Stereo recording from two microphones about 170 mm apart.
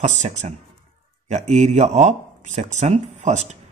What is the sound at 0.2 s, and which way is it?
Speech, 40° right (ahead or behind).